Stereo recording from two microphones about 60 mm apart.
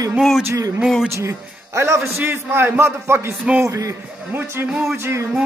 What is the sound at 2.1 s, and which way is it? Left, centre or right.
A man's voice, right.